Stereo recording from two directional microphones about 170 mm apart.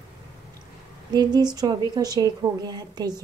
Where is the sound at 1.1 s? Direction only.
25° right (ahead or behind).